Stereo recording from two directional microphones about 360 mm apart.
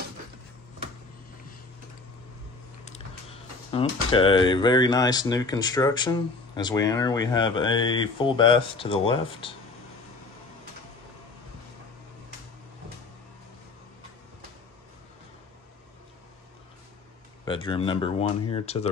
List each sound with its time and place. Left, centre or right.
3.7 s speech: centre
17.5 s speech: centre